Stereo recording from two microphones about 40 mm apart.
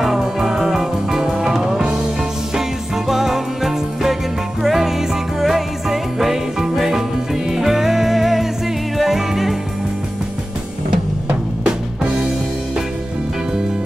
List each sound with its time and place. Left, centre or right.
0.0 s music: centre
1.2 s music: centre
3.1 s music: centre